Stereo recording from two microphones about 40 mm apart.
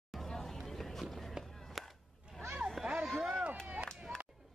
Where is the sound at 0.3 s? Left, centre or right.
Centre.